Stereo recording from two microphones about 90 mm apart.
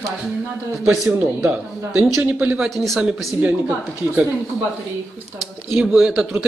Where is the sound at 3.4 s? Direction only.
20° right (ahead or behind).